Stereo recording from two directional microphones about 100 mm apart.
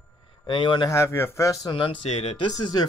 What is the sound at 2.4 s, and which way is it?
Speech, 45° left (ahead or behind).